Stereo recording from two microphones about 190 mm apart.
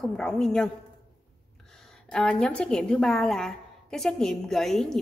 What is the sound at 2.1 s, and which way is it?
A woman's voice, 5° left (ahead or behind).